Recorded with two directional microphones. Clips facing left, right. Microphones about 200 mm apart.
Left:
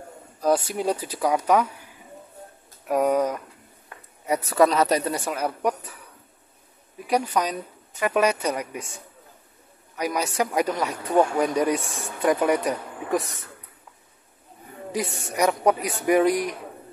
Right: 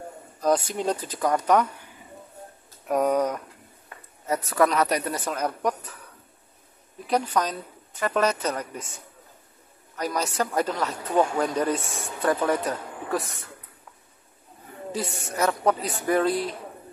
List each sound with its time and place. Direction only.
0.4 s speech: 5° left (ahead or behind)
2.9 s speech: 5° left (ahead or behind)
4.6 s speech: 25° left (ahead or behind)
5.1 s speech: 10° left (ahead or behind)
7.1 s speech: 10° left (ahead or behind)
9.9 s speech: 10° left (ahead or behind)
11.8 s speech: centre (ahead or behind)
12.2 s speech: 15° left (ahead or behind)
15.3 s speech: 15° left (ahead or behind)